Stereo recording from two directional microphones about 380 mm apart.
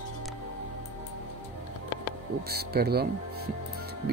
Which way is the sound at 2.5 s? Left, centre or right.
Right.